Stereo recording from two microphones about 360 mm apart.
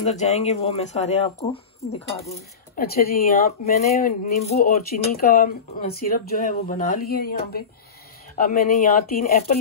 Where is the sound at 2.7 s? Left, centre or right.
Left.